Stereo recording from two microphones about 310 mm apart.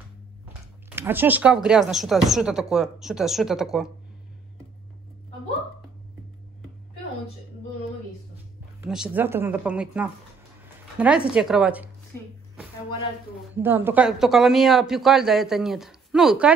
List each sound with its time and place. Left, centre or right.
0.8 s speech: centre
8.8 s speech: centre
12.1 s speech: centre
13.6 s speech: centre